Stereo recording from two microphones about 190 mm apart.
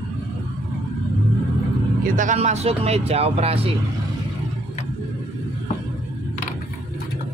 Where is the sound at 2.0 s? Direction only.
45° right (ahead or behind).